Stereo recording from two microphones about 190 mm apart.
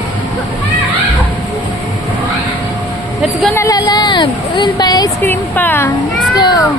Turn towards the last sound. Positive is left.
turn(degrees=20)  # may be behind; listen again after turning